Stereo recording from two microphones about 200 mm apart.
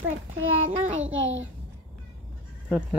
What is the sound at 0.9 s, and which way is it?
Speech, 75° right (ahead or behind).